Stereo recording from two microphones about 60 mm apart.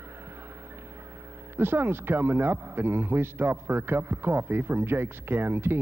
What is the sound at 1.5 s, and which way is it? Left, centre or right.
A man's voice, right.